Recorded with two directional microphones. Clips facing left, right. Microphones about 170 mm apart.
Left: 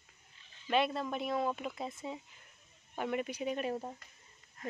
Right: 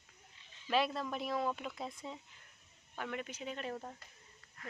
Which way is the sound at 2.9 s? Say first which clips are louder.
Left 6 dB; 15° left (ahead or behind).